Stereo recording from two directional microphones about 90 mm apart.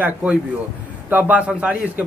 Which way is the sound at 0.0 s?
15° right (ahead or behind).